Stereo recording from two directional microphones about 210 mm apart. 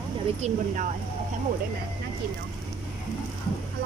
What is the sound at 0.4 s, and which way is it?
Speech, 35° right (ahead or behind).